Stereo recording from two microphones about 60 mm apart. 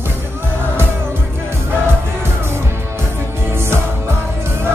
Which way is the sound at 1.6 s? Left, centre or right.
Right.